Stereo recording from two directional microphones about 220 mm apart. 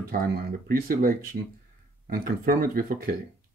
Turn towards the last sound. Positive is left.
turn(degrees=-40)  # may be behind; listen again after turning